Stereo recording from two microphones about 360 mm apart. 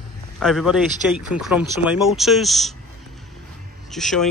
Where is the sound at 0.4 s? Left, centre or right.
Centre.